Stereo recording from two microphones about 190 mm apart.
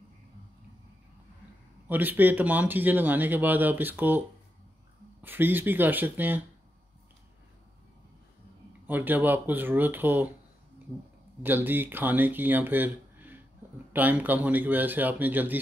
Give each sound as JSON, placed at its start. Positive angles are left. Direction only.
{"t": 1.9, "sound": "speech", "side_deg": -10}
{"t": 5.2, "sound": "speech", "side_deg": -10}
{"t": 8.8, "sound": "speech", "side_deg": -10}
{"t": 11.4, "sound": "speech", "side_deg": -10}